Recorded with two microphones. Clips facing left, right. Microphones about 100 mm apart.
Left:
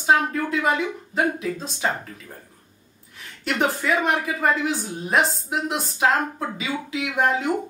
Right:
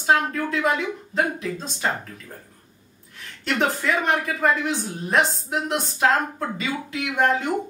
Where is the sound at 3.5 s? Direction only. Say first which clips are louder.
Even; centre (ahead or behind).